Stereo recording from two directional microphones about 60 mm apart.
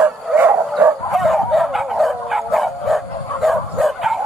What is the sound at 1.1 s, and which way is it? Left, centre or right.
Dog, centre.